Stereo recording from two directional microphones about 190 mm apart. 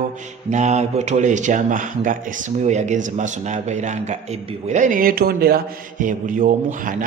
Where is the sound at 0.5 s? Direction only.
35° right (ahead or behind).